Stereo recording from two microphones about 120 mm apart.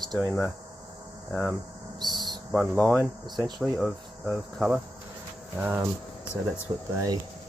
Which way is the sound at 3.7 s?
5° right (ahead or behind).